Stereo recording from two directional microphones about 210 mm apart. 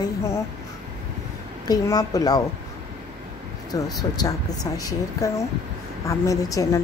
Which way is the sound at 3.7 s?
15° left (ahead or behind).